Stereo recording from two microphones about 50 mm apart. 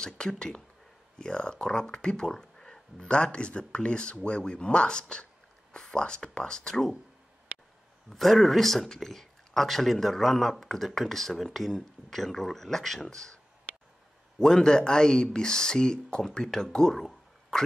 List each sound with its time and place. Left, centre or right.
0.0 s speech: centre
8.1 s speech: centre
14.4 s speech: centre
16.7 s a sound: centre